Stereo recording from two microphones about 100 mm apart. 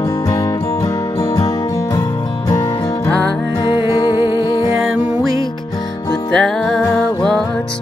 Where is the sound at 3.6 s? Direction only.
45° left (ahead or behind).